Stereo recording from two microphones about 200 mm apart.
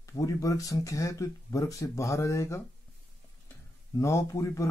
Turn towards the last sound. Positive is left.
turn(degrees=15)  # may be behind; listen again after turning